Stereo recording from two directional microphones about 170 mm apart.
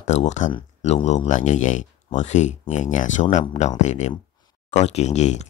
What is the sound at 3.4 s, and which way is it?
Speech, 35° left (ahead or behind).